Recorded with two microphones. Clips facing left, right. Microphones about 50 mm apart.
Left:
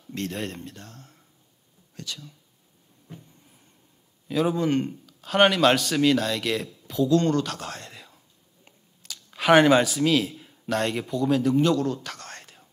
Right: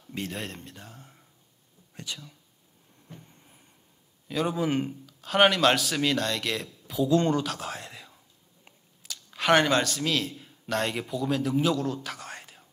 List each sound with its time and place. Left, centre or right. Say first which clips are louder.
0.1 s a man's voice: left 4 dB; centre
4.3 s a man's voice: left 4 dB; centre
7.1 s speech: left 2 dB; centre
7.4 s speech: even; centre